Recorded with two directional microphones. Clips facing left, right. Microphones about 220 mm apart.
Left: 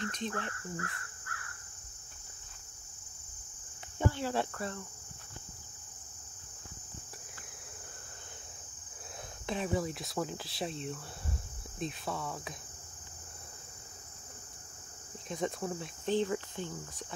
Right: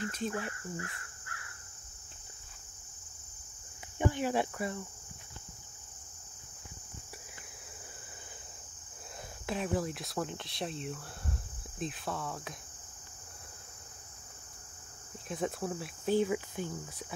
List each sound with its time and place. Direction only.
0.0 s speech: 5° right (ahead or behind)
0.7 s crow: 25° right (ahead or behind)
4.0 s speech: 15° right (ahead or behind)
9.5 s speech: centre (ahead or behind)
15.2 s speech: 5° right (ahead or behind)